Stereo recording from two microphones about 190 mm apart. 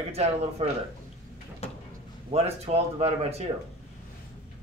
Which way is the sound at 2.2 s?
35° right (ahead or behind).